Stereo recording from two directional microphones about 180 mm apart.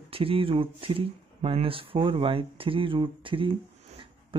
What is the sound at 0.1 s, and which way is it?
Speech, 30° right (ahead or behind).